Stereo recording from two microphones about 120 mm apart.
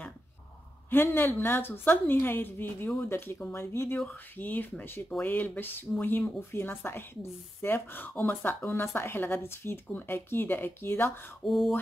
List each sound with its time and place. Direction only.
0.8 s a woman's voice: 15° left (ahead or behind)
11.4 s mantra: centre (ahead or behind)